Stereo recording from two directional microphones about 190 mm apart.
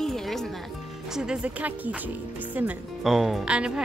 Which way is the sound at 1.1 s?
5° right (ahead or behind).